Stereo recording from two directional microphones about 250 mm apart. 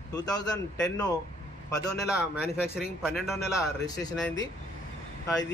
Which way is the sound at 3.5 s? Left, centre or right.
Centre.